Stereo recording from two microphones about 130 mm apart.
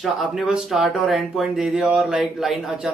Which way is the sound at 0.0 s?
Centre (ahead or behind).